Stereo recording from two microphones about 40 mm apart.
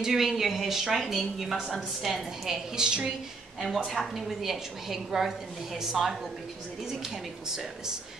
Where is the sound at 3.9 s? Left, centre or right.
Centre.